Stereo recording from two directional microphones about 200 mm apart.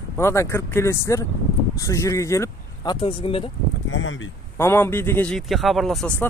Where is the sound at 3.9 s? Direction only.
70° left (ahead or behind).